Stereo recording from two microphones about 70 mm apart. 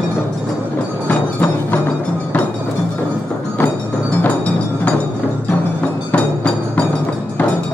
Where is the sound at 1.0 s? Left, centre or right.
Left.